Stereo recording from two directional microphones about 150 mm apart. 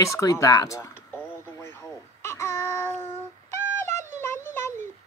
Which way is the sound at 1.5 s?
15° left (ahead or behind).